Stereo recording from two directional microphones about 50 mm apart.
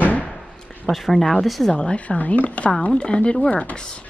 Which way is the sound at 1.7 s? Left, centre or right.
Left.